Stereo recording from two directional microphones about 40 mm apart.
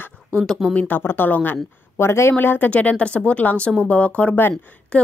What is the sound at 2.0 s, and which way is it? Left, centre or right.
Speech, left.